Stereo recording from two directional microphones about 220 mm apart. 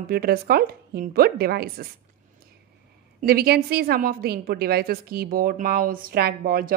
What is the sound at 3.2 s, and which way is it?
A woman's voice, 45° right (ahead or behind).